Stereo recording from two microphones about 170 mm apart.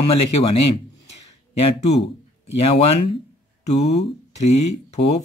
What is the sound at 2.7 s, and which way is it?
Speech, 35° left (ahead or behind).